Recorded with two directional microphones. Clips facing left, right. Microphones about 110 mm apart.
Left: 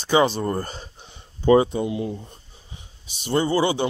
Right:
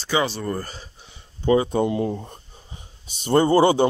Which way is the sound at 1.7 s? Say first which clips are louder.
Right 4 dB; 50° right (ahead or behind).